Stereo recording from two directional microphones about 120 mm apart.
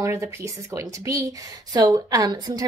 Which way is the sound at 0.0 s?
25° right (ahead or behind).